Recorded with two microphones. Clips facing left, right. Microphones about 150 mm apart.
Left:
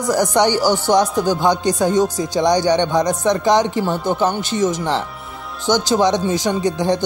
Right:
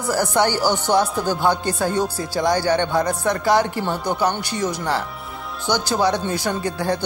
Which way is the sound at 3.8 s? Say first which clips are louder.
Left 4 dB; 5° left (ahead or behind).